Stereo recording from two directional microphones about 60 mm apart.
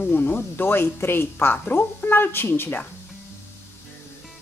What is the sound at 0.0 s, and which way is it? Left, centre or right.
Speech, left.